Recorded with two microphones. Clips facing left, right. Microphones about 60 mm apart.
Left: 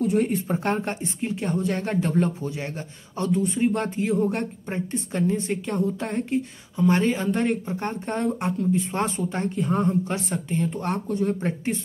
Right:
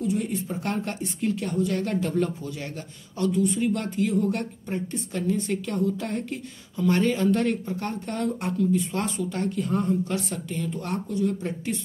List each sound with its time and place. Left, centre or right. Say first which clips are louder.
0.0 s speech: left 5 dB; left
0.7 s a woman's voice: left 1 dB; left